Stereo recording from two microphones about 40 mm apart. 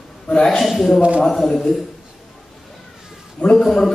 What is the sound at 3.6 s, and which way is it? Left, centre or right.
Speech, centre.